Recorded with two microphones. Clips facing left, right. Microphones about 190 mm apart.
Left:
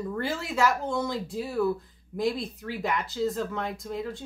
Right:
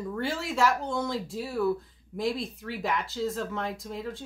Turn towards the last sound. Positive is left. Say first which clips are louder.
# left 2 dB
turn(degrees=0)  # may be behind; listen again after turning